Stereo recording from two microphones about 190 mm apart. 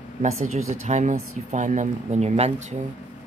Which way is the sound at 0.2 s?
35° right (ahead or behind).